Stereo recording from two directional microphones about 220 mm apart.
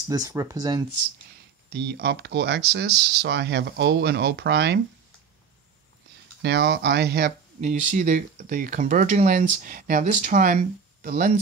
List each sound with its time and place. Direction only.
0.1 s speech: 15° right (ahead or behind)
1.7 s speech: 50° right (ahead or behind)
6.4 s speech: 50° right (ahead or behind)
7.6 s speech: 35° right (ahead or behind)